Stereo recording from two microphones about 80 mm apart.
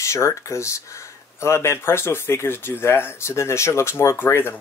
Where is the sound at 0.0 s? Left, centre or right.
Left.